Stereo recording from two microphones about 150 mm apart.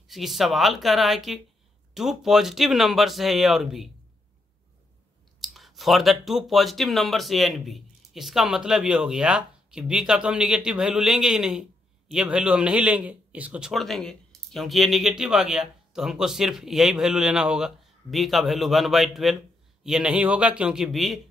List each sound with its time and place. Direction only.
0.1 s a man's voice: centre (ahead or behind)
5.4 s a man's voice: centre (ahead or behind)